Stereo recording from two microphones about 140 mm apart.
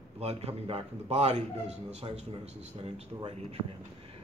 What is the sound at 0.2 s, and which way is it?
A man's voice, 45° right (ahead or behind).